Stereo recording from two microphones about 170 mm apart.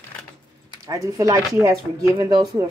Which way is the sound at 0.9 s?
20° right (ahead or behind).